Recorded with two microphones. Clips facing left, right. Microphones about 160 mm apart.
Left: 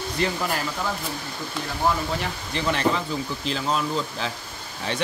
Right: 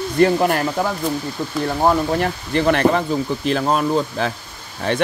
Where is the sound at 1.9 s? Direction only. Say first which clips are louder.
Right 6 dB; 55° right (ahead or behind).